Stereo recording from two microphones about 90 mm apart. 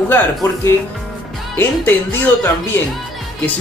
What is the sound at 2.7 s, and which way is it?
Speech, 25° left (ahead or behind).